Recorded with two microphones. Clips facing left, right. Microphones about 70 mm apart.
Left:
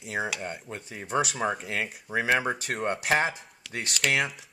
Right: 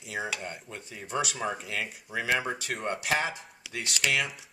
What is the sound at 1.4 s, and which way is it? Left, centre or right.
Cutlery, left.